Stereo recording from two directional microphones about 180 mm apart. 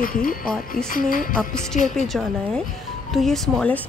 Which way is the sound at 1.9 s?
Centre (ahead or behind).